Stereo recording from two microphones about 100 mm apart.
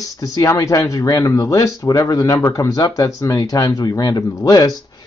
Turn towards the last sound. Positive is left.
turn(degrees=40)  # may be behind; listen again after turning